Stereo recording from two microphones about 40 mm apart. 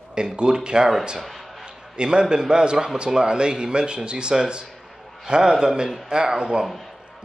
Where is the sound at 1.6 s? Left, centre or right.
Right.